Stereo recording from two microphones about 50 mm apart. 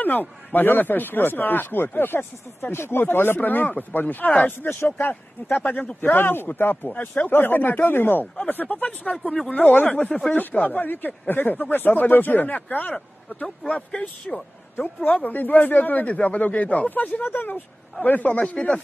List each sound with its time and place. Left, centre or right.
0.0 s speech: left
3.3 s speech: left
5.9 s speech: left
9.1 s speech: centre
9.5 s a man's voice: left
10.5 s a man's voice: left
16.9 s a man's voice: left